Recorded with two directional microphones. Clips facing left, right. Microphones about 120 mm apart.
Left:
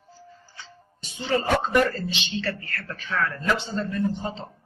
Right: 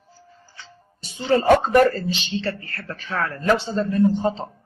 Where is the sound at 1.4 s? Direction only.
50° right (ahead or behind).